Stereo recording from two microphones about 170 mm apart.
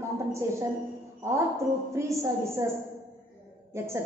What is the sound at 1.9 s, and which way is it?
Speech, 15° right (ahead or behind).